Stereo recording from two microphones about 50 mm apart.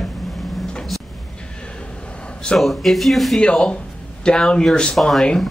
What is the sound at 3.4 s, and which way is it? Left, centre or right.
A man's voice, centre.